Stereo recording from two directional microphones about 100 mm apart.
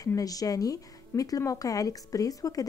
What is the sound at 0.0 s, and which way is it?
A woman's voice, 35° left (ahead or behind).